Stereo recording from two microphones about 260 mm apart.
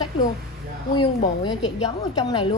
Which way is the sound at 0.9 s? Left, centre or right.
Centre.